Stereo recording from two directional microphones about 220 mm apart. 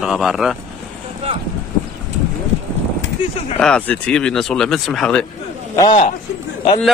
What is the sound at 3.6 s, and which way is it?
Speech, 5° left (ahead or behind).